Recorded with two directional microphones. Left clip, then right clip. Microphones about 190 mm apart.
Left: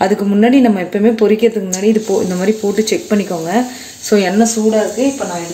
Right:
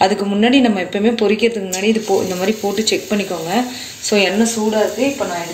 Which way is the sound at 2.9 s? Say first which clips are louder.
Left 3 dB; 20° left (ahead or behind).